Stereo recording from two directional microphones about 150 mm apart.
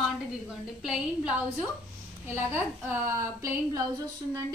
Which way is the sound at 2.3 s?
15° right (ahead or behind).